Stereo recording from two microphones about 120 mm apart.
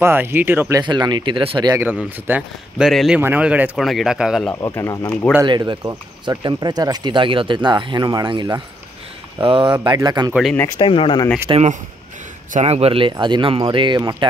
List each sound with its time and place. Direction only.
0.0 s speech: 20° right (ahead or behind)
0.7 s speech: 35° right (ahead or behind)
1.8 s speech: 15° right (ahead or behind)
2.9 s speech: centre (ahead or behind)
3.2 s speech: 15° right (ahead or behind)
3.7 s speech: centre (ahead or behind)
4.6 s speech: 25° left (ahead or behind)
5.4 s speech: 30° right (ahead or behind)
5.7 s speech: 40° right (ahead or behind)
10.8 s speech: 45° left (ahead or behind)
11.5 s speech: 35° right (ahead or behind)
12.5 s speech: 65° right (ahead or behind); by 14.1 s 40° right (ahead or behind)